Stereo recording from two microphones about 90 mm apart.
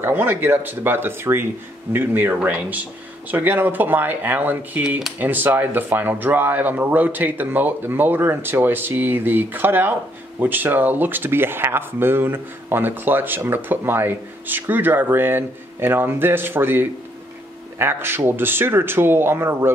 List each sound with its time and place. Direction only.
0.0 s speech: 20° right (ahead or behind)